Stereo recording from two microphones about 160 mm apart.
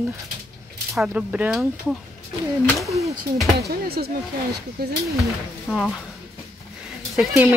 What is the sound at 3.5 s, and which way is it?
Speech, 75° right (ahead or behind).